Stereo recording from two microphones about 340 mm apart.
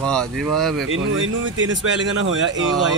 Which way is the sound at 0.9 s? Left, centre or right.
Right.